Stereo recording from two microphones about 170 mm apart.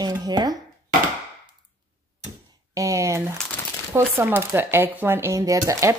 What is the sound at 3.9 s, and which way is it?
Speech, 10° right (ahead or behind).